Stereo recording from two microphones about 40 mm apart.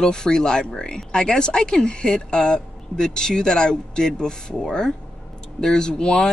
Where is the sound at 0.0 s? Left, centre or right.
Centre.